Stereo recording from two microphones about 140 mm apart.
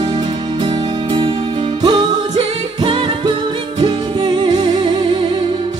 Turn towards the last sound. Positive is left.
turn(degrees=-35)  # may be behind; listen again after turning